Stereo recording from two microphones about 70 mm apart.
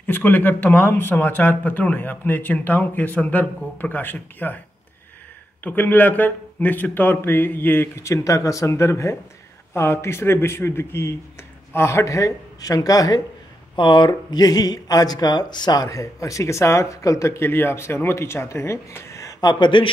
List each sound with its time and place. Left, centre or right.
0.0 s speech: left
5.6 s speech: left
7.9 s speech: left
14.0 s speech: left
17.4 s speech: left
19.2 s a sound: left